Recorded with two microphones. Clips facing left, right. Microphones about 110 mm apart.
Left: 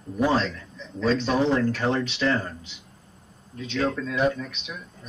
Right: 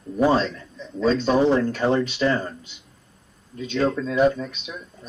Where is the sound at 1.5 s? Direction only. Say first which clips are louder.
Right 2 dB; 30° right (ahead or behind).